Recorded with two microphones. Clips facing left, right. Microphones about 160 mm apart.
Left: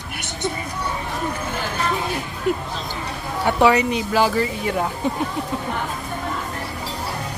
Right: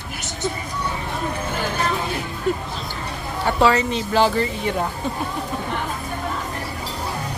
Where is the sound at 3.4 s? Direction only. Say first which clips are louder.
Left 1 dB; 15° left (ahead or behind).